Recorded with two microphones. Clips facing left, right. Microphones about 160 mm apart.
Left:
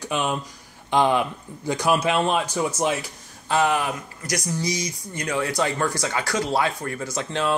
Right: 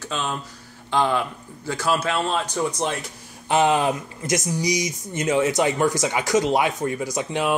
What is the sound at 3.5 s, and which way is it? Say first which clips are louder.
Speech: right 3 dB; 20° right (ahead or behind).